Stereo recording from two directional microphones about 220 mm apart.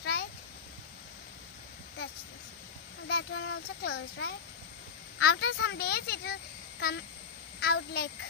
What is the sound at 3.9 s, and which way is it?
Speech, 75° left (ahead or behind).